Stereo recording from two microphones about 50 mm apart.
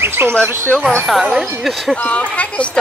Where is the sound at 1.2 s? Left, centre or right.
Centre.